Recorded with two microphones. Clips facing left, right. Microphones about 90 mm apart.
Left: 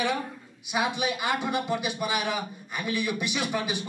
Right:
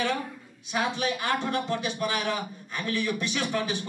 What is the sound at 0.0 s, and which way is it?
A man's voice, 15° left (ahead or behind).